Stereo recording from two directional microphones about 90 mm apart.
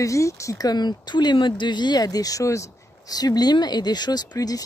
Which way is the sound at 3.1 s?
45° left (ahead or behind).